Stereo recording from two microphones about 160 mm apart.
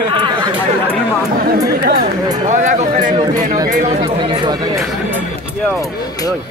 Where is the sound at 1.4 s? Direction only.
75° right (ahead or behind).